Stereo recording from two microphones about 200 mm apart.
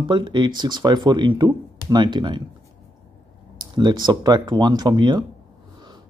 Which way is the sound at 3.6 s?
20° right (ahead or behind).